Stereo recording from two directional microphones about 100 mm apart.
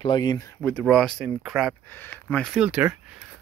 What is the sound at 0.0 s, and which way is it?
Speech, 45° left (ahead or behind).